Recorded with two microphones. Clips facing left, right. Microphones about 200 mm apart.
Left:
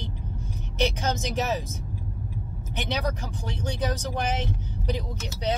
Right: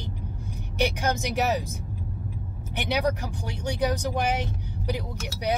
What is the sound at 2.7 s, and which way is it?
Speech, 15° right (ahead or behind).